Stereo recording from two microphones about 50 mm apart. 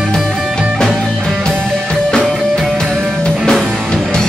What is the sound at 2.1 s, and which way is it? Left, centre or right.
Music, centre.